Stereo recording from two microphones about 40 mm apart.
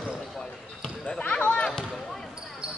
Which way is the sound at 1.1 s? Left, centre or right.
Left.